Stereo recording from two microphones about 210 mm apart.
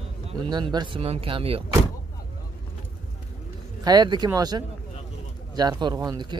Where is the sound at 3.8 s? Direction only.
20° right (ahead or behind).